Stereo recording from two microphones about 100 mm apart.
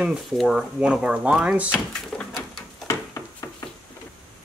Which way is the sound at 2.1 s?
15° left (ahead or behind).